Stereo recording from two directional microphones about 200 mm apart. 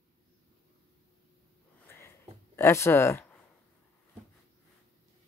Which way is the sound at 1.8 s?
10° left (ahead or behind).